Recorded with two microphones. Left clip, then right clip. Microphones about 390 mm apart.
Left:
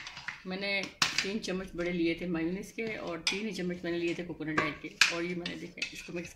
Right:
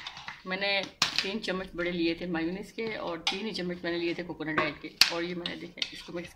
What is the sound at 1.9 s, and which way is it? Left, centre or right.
Speech, right.